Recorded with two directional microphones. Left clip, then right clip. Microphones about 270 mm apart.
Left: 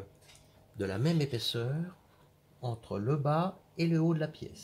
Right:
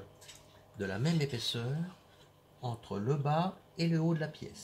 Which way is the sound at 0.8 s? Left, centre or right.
Left.